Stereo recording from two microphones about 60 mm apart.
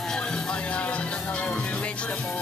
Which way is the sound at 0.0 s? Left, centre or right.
Centre.